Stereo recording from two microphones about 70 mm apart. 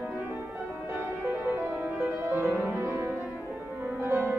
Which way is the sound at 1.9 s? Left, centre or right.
Right.